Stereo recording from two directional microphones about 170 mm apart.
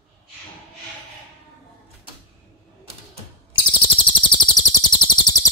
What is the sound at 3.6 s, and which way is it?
Chirp, 30° left (ahead or behind).